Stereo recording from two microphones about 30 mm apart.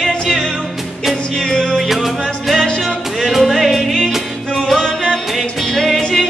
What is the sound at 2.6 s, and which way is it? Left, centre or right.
Music, centre.